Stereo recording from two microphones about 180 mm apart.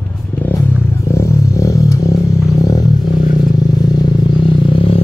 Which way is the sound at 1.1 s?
15° left (ahead or behind).